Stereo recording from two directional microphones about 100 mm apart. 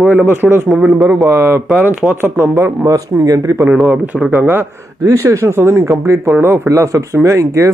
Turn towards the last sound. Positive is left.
turn(degrees=-30)  # may be behind; listen again after turning